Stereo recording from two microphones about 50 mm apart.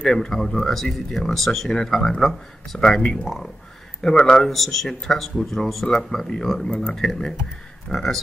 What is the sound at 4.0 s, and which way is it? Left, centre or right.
Speech, centre.